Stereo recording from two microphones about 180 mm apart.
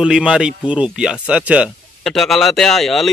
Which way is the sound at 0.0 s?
5° right (ahead or behind).